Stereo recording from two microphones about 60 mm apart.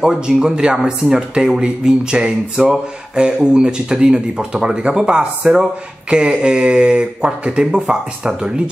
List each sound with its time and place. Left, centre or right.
0.0 s speech: centre